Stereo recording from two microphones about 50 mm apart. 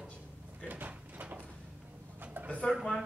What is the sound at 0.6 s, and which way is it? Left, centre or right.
Sliding door, right.